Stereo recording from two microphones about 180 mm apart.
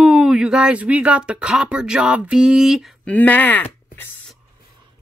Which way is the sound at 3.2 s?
10° left (ahead or behind).